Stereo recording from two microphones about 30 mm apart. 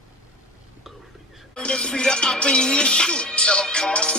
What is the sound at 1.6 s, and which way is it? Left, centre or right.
Music, left.